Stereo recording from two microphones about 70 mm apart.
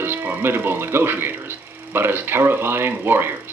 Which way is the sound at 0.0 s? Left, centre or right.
Right.